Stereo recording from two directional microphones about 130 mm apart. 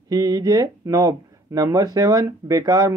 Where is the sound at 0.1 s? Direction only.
30° right (ahead or behind).